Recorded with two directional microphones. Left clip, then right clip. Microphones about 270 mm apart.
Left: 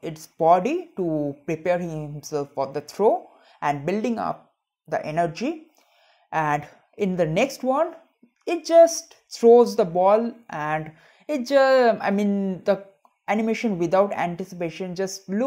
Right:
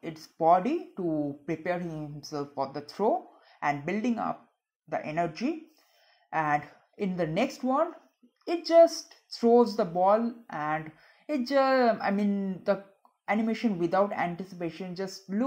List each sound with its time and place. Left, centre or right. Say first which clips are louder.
0.0 s speech: left 5 dB; left